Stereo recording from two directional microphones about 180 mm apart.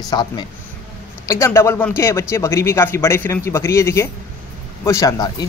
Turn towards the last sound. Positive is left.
turn(degrees=20)  # may be behind; listen again after turning